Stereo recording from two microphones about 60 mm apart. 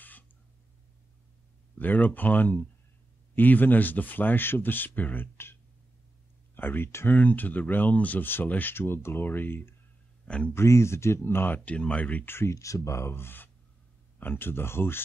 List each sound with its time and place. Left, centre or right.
1.8 s speech: left
7.1 s speech: left
10.2 s speech: centre
10.5 s speech: left
12.3 s speech: left
12.5 s speech: left